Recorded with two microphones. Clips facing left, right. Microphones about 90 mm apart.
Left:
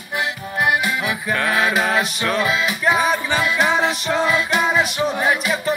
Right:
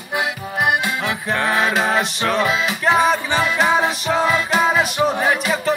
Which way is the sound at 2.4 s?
Centre (ahead or behind).